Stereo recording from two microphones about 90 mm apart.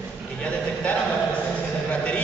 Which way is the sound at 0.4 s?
15° left (ahead or behind).